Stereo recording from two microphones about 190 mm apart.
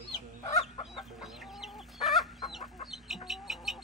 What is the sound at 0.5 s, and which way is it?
Chicken, 30° left (ahead or behind).